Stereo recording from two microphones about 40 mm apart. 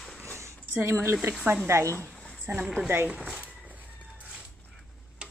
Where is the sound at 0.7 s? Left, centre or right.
Right.